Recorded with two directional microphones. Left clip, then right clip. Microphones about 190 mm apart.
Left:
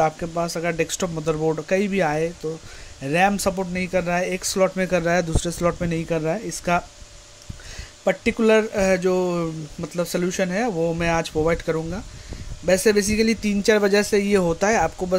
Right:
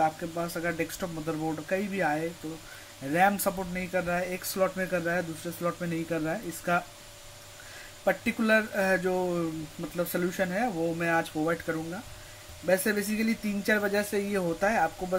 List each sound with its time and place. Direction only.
0.0 s speech: 45° left (ahead or behind)
8.0 s speech: 55° left (ahead or behind)